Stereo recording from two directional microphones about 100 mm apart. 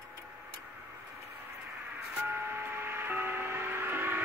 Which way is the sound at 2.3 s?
20° right (ahead or behind).